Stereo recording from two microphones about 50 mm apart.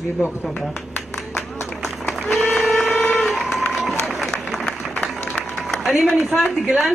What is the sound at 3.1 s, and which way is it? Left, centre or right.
Run, centre.